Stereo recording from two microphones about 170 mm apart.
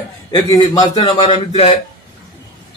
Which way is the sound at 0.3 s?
25° left (ahead or behind).